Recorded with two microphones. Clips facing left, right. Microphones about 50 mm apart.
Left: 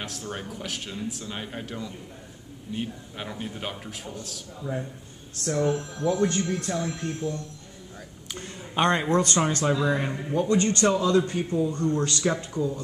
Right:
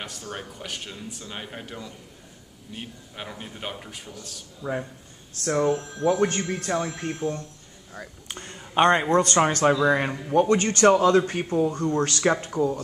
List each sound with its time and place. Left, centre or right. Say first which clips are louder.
0.0 s speech: left 1 dB; centre
4.6 s speech: right 3 dB; right
8.7 s speech: right 4 dB; right
9.4 s speech: right 4 dB; right